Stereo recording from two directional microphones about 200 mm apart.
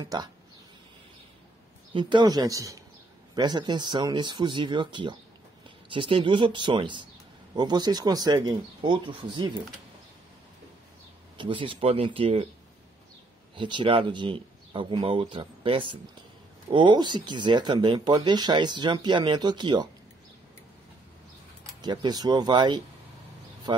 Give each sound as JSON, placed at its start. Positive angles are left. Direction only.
{"t": 0.0, "sound": "speech", "side_deg": -20}
{"t": 2.0, "sound": "speech", "side_deg": -25}
{"t": 11.3, "sound": "speech", "side_deg": -25}
{"t": 13.6, "sound": "speech", "side_deg": -25}
{"t": 21.8, "sound": "speech", "side_deg": -20}